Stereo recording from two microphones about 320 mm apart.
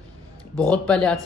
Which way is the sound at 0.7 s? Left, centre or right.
Centre.